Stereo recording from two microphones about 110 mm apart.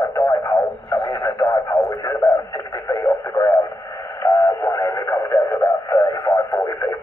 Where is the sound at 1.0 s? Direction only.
40° left (ahead or behind); by 6.6 s 20° left (ahead or behind).